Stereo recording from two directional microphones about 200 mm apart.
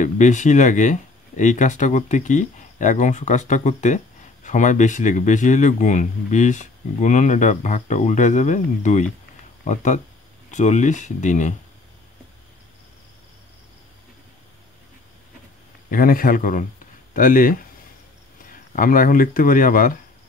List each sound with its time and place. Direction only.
0.0 s speech: 35° left (ahead or behind)
15.9 s a man's voice: 45° left (ahead or behind)